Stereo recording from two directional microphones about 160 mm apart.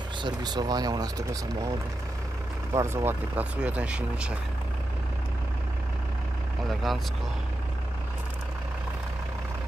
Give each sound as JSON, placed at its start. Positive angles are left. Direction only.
{"t": 0.2, "sound": "speech", "side_deg": -25}
{"t": 2.7, "sound": "speech", "side_deg": -15}
{"t": 6.7, "sound": "speech", "side_deg": 0}